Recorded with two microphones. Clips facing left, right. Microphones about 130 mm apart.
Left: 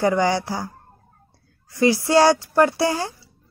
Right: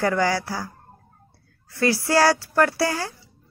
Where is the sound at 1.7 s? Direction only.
20° left (ahead or behind).